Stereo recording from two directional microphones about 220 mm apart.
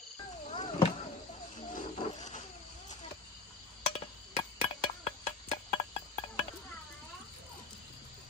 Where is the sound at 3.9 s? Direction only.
25° left (ahead or behind).